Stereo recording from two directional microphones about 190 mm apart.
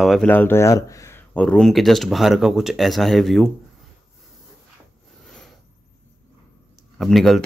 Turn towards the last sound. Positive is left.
turn(degrees=0)  # may be behind; listen again after turning